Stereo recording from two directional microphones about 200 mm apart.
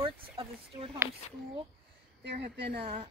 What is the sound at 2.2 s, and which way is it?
Speech, 55° right (ahead or behind).